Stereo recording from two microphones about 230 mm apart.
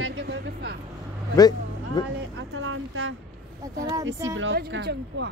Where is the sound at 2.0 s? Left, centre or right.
Centre.